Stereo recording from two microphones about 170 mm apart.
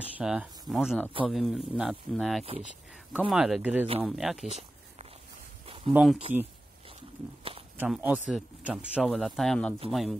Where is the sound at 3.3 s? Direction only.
5° right (ahead or behind).